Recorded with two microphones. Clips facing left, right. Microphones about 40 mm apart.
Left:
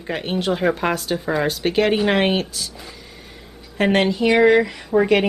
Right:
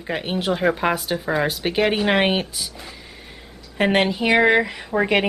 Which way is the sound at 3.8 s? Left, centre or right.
Centre.